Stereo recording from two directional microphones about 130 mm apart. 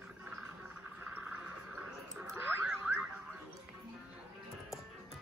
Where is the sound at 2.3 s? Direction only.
15° right (ahead or behind).